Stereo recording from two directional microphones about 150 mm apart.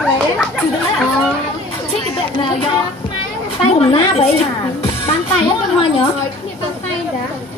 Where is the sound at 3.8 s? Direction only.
40° left (ahead or behind).